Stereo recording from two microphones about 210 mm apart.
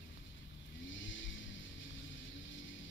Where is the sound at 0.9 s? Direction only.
65° left (ahead or behind).